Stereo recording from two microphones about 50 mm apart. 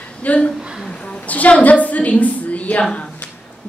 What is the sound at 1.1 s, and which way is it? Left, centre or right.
A woman's voice, left.